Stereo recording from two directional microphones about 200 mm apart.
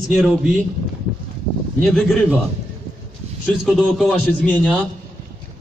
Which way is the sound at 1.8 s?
5° left (ahead or behind).